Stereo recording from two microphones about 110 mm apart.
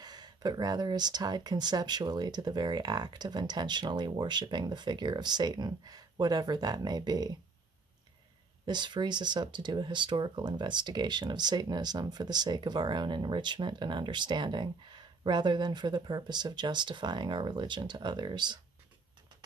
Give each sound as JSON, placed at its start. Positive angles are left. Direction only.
{"t": 0.0, "sound": "speech", "side_deg": -40}
{"t": 8.6, "sound": "speech", "side_deg": -45}